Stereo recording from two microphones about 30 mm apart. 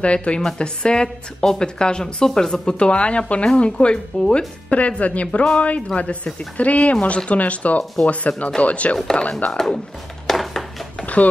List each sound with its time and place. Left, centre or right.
0.0 s speech: left
1.0 s speech: centre
1.8 s speech: left
2.8 s speech: left
4.6 s speech: left
10.2 s a sound: centre
11.2 s speech: left